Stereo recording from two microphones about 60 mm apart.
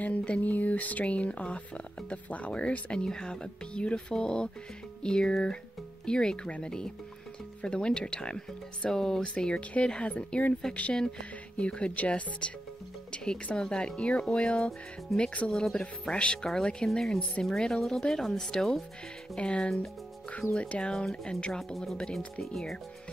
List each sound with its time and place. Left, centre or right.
0.0 s speech: left
21.5 s speech: centre